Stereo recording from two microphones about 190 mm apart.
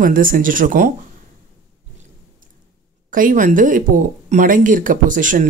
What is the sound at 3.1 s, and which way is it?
Speech, 45° right (ahead or behind).